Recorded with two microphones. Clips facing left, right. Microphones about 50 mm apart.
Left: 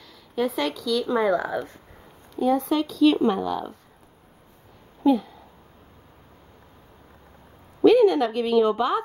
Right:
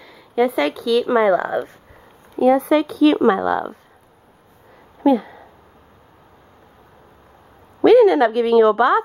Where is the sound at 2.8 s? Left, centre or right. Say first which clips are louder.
Right 4 dB; right.